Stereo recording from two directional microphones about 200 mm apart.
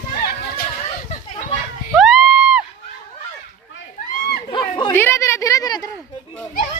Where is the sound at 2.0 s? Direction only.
Centre (ahead or behind).